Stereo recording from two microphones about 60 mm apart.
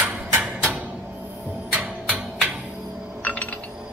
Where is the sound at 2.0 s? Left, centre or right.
Right.